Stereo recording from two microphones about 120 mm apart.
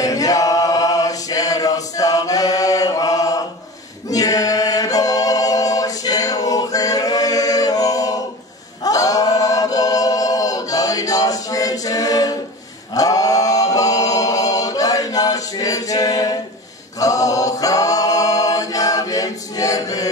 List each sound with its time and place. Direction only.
0.0 s choir: 30° left (ahead or behind)
12.9 s chant: 30° left (ahead or behind)
17.0 s a capella: 30° left (ahead or behind)